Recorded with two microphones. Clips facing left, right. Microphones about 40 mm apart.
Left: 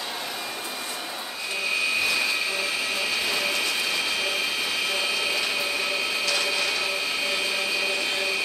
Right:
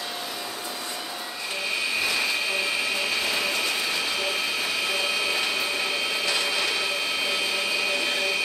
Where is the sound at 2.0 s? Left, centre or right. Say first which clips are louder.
Left 1 dB; centre.